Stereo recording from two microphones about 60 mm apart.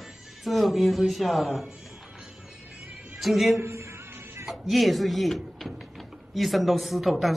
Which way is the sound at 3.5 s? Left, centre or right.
Right.